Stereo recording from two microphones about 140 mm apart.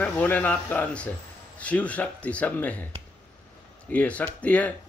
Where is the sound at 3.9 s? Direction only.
10° left (ahead or behind).